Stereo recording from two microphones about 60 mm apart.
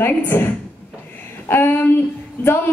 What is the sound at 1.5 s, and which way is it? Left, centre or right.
Speech, left.